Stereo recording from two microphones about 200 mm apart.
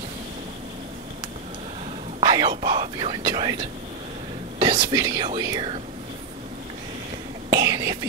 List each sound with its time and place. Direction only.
2.1 s whispering: 20° right (ahead or behind)
2.6 s speech: 20° right (ahead or behind)
4.6 s speech: 25° right (ahead or behind)
7.4 s whispering: 20° right (ahead or behind)